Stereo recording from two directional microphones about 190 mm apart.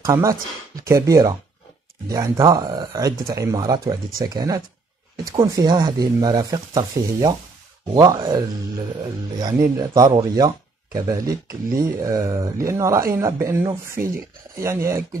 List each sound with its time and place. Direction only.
0.0 s speech: 15° right (ahead or behind)